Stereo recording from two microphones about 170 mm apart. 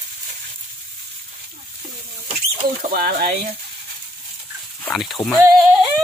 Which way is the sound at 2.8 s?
60° right (ahead or behind).